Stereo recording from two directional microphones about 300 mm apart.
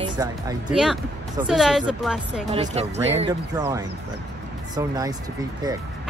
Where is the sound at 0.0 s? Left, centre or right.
Centre.